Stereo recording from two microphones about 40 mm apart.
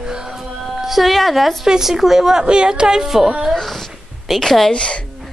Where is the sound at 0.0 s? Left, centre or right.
Centre.